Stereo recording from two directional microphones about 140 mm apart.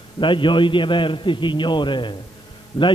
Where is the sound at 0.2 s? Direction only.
35° left (ahead or behind).